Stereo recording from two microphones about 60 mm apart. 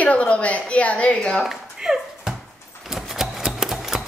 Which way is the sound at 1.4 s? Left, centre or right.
Centre.